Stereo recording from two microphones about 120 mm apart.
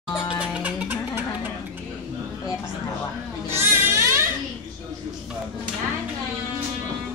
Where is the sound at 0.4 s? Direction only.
10° right (ahead or behind).